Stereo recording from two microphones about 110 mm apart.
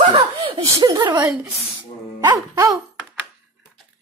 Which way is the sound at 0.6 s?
35° right (ahead or behind).